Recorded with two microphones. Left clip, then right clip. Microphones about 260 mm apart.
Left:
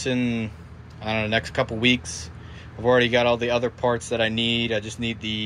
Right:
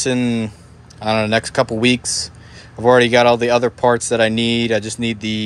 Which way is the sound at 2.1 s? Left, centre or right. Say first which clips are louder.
Right 12 dB; right.